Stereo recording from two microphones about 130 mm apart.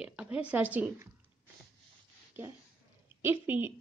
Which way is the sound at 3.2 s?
15° right (ahead or behind).